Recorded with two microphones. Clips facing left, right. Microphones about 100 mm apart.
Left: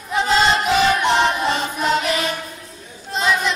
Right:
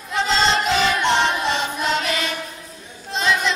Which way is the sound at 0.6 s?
5° left (ahead or behind).